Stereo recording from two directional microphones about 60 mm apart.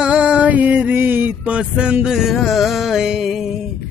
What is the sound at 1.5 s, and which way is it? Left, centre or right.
Music, centre.